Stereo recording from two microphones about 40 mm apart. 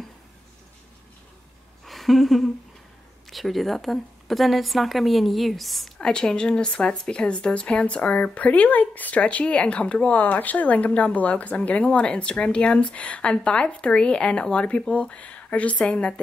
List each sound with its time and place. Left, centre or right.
1.9 s a sound: centre
3.3 s a woman's voice: centre
5.9 s a sound: centre
6.2 s speech: left
9.2 s speech: left
10.2 s speech: left